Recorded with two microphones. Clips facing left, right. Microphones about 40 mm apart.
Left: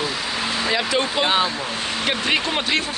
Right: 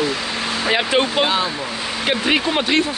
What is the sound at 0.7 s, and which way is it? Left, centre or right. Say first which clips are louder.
Speech: right 5 dB; right.